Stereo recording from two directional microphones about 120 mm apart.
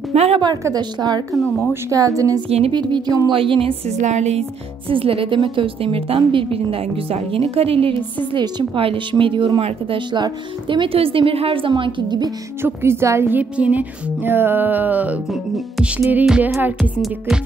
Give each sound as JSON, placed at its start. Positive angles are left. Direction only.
{"t": 0.1, "sound": "a woman's voice", "side_deg": -60}
{"t": 0.7, "sound": "a woman's voice", "side_deg": -35}
{"t": 1.3, "sound": "a woman's voice", "side_deg": 0}
{"t": 1.7, "sound": "speech", "side_deg": -25}
{"t": 2.7, "sound": "a woman's voice", "side_deg": -40}
{"t": 4.0, "sound": "a woman's voice", "side_deg": -70}
{"t": 8.3, "sound": "a woman's voice", "side_deg": -40}
{"t": 12.6, "sound": "speech", "side_deg": -20}